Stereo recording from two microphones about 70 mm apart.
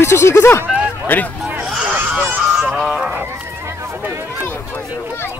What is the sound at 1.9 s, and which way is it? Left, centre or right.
Honk, right.